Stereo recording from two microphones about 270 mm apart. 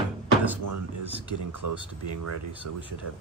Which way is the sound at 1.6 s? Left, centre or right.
Right.